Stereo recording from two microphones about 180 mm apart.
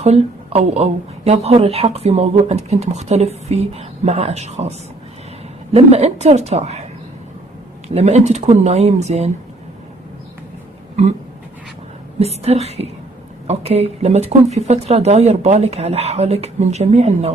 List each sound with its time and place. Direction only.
0.0 s speech: 35° right (ahead or behind)
7.9 s speech: 35° right (ahead or behind)
12.4 s speech: 35° right (ahead or behind)